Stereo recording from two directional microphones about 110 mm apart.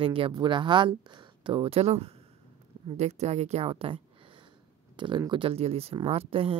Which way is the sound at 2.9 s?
80° right.